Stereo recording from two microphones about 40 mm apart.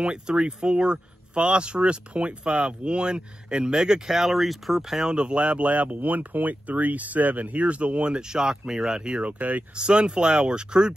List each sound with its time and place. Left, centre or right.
0.0 s speech: right
3.7 s speech: centre
5.1 s speech: right
9.4 s speech: right
9.8 s speech: right